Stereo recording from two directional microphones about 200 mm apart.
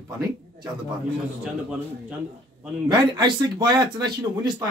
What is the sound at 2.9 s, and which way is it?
Speech, 20° right (ahead or behind).